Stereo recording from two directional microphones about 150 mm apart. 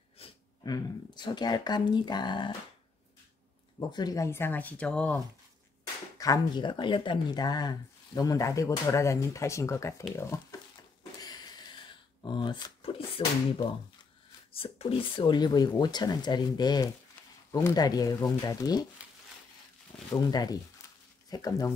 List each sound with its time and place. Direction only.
0.2 s a sound: 40° left (ahead or behind)
0.7 s speech: 30° left (ahead or behind)
3.9 s speech: 25° left (ahead or behind); by 5.2 s 5° left (ahead or behind)
6.1 s speech: 25° left (ahead or behind)
11.1 s a sound: 25° left (ahead or behind)
12.2 s speech: 30° left (ahead or behind)
14.5 s speech: 40° left (ahead or behind)
20.2 s speech: 25° left (ahead or behind)